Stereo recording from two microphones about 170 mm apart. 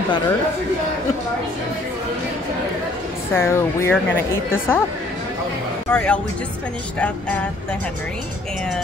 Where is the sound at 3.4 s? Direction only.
15° left (ahead or behind).